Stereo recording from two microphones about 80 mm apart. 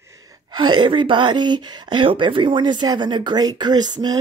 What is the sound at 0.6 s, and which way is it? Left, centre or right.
A woman's voice, right.